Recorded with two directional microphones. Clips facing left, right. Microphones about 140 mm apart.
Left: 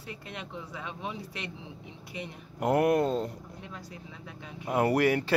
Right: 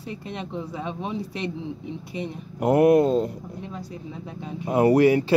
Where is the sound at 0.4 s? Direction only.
30° right (ahead or behind).